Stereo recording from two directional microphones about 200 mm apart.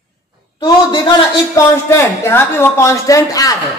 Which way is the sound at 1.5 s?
15° left (ahead or behind).